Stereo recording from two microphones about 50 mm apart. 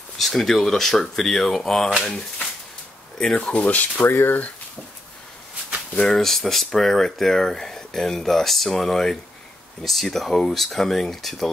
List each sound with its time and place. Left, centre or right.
0.2 s speech: centre
2.0 s speech: centre
3.3 s speech: left
6.1 s speech: centre